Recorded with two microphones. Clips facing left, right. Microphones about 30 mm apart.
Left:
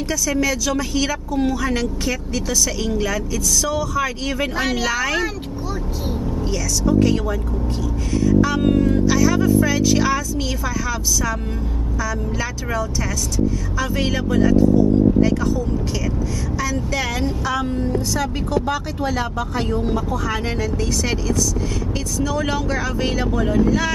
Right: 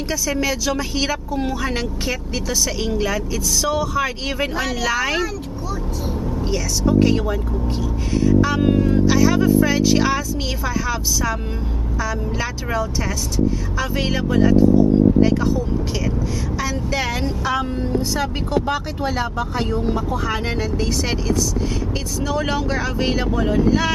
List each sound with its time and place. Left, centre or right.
0.1 s speech: centre
4.6 s speech: centre
4.8 s speech: centre
8.4 s speech: centre
16.5 s speech: centre
22.2 s speech: centre